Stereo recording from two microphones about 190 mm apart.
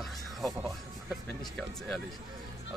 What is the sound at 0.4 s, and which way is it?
Music, centre (ahead or behind).